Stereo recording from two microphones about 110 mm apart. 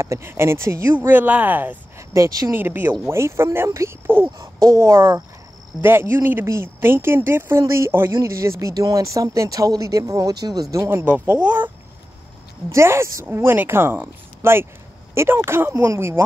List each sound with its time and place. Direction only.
0.0 s speech: 25° right (ahead or behind)
2.0 s speech: 30° right (ahead or behind)
2.5 s speech: 20° right (ahead or behind)
12.7 s speech: 25° right (ahead or behind)